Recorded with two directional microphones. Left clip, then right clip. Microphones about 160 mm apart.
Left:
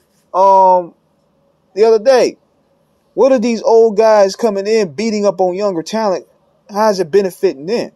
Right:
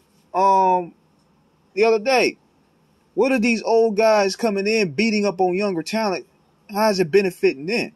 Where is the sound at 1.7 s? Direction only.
40° left (ahead or behind).